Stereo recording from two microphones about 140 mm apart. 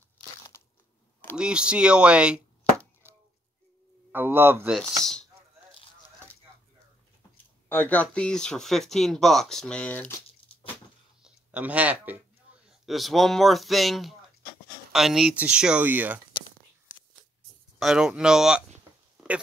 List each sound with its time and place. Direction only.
0.5 s crunch: 20° left (ahead or behind)
1.3 s speech: 5° right (ahead or behind)
4.1 s speech: 15° right (ahead or behind)
4.7 s speech: 5° left (ahead or behind)
7.7 s speech: 10° left (ahead or behind)
11.2 s speech: 10° right (ahead or behind)
12.8 s speech: centre (ahead or behind)
17.7 s speech: 5° right (ahead or behind)